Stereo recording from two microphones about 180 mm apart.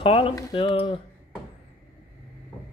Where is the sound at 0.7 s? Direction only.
30° left (ahead or behind).